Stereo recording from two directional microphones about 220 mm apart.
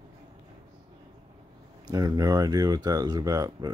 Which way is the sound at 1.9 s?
15° right (ahead or behind).